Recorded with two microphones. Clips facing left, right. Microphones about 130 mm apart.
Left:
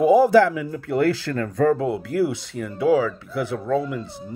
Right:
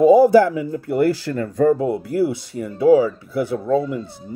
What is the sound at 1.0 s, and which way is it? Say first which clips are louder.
Speech: right 2 dB; 10° right (ahead or behind).